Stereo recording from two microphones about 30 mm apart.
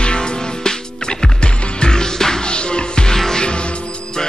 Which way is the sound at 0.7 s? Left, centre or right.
Left.